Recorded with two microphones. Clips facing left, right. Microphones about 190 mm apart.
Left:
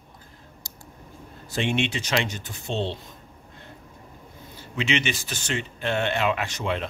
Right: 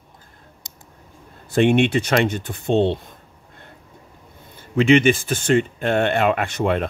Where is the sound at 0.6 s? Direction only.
20° right (ahead or behind).